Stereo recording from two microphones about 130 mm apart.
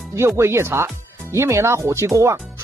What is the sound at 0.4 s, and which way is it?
Speech, 20° right (ahead or behind).